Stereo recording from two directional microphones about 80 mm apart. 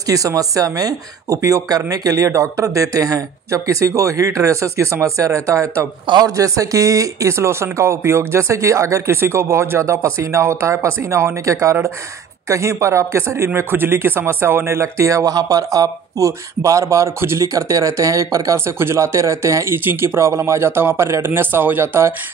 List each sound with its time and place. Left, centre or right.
0.0 s speech: right